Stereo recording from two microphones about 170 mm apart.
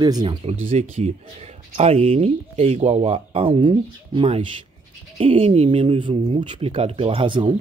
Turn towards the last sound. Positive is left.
turn(degrees=-30)  # may be behind; listen again after turning